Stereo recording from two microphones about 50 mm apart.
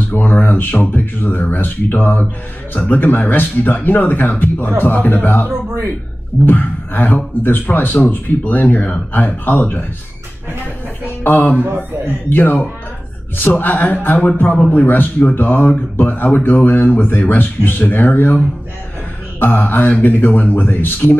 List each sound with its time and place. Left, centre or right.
0.1 s speech: left
11.1 s speech: left
11.6 s a man's voice: right
12.3 s speech: left
19.4 s speech: left